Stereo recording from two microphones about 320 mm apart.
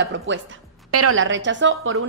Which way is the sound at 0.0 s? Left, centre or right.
Right.